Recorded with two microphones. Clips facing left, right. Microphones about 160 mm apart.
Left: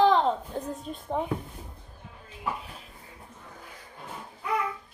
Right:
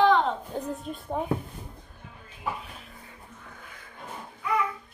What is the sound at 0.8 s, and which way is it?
Speech, centre (ahead or behind).